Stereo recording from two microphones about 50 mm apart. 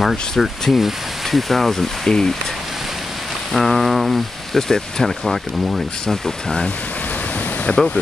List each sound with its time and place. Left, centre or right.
0.0 s speech: centre
3.5 s speech: centre
7.7 s speech: left